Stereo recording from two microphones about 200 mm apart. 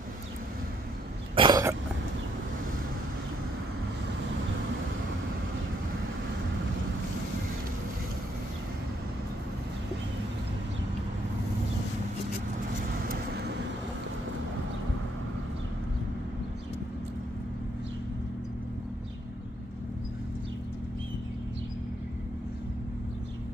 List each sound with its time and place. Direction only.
1.3 s cough: 20° right (ahead or behind)
13.1 s vehicle: 55° right (ahead or behind)